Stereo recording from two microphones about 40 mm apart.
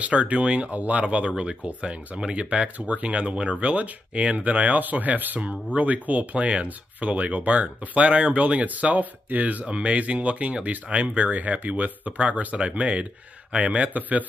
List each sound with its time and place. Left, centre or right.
0.0 s speech: right